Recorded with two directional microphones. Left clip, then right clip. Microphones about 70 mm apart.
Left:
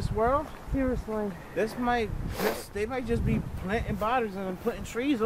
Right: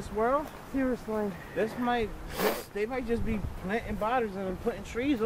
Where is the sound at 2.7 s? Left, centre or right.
Left.